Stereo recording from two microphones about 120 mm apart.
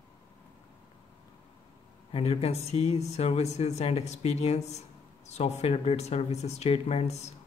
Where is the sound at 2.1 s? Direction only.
55° left (ahead or behind).